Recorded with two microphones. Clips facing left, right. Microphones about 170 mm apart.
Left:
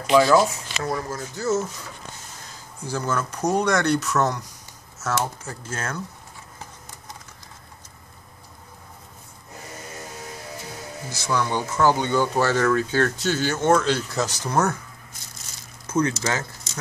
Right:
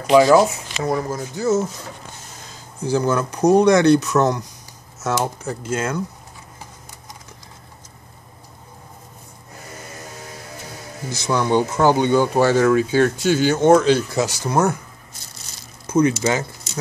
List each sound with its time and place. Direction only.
0.1 s speech: 20° right (ahead or behind)
2.9 s speech: 15° right (ahead or behind)
11.1 s speech: 20° right (ahead or behind)
15.9 s speech: 10° right (ahead or behind)